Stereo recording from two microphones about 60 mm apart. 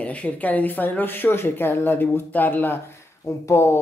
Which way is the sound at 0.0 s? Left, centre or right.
Left.